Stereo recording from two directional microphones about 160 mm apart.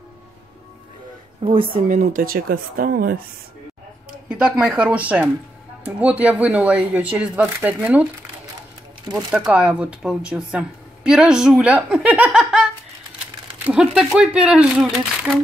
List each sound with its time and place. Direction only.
1.4 s speech: 35° right (ahead or behind)
1.7 s speech: 55° right (ahead or behind)
4.3 s speech: 5° right (ahead or behind)
9.1 s speech: 5° right (ahead or behind)
13.7 s speech: 5° right (ahead or behind)